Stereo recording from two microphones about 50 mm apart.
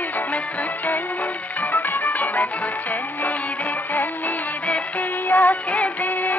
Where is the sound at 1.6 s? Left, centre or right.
Left.